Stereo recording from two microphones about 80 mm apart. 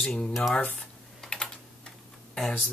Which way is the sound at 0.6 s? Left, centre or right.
Centre.